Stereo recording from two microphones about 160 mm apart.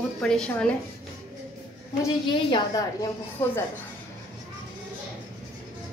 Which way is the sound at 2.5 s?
20° left (ahead or behind).